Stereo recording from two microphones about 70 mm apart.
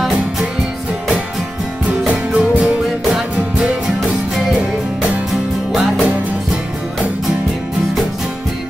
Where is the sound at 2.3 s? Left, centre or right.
Centre.